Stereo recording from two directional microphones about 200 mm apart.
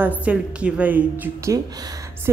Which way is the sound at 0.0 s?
5° right (ahead or behind).